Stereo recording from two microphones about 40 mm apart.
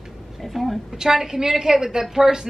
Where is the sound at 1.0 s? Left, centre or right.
Centre.